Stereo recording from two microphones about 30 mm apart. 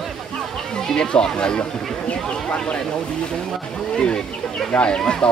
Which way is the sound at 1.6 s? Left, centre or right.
Left.